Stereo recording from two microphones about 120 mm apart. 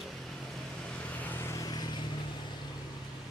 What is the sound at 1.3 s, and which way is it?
Vehicle, 20° left (ahead or behind).